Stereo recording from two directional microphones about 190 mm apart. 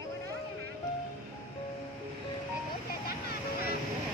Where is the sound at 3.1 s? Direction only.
50° left (ahead or behind).